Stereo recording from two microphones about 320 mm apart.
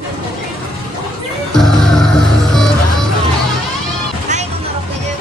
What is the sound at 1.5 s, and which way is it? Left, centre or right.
Music, centre.